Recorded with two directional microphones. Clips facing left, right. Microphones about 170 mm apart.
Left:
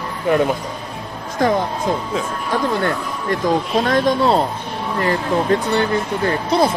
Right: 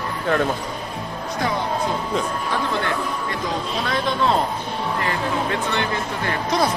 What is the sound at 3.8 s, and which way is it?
Speech, 45° left (ahead or behind).